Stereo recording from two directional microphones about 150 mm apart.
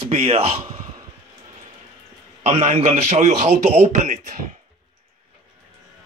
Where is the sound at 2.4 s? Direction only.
40° right (ahead or behind).